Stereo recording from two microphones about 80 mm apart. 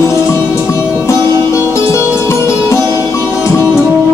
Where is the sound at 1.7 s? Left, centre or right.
Left.